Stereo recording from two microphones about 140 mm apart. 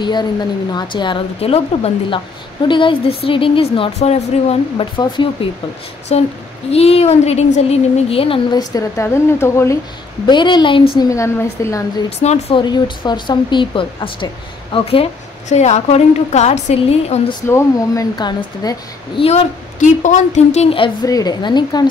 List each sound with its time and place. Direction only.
0.0 s speech: 30° left (ahead or behind); by 4.8 s 50° left (ahead or behind)
4.9 s speech: 35° left (ahead or behind)
6.1 s a woman's voice: 50° left (ahead or behind); by 9.8 s 20° left (ahead or behind)
10.2 s speech: 35° left (ahead or behind)
11.0 s a woman's voice: 20° left (ahead or behind)
12.2 s a woman's voice: 50° left (ahead or behind)
12.5 s speech: 35° left (ahead or behind)
15.5 s a woman's voice: 50° left (ahead or behind)
17.5 s a woman's voice: 20° left (ahead or behind)
19.2 s a woman's voice: 55° left (ahead or behind); by 21.1 s 40° left (ahead or behind)
21.1 s a woman's voice: 30° left (ahead or behind)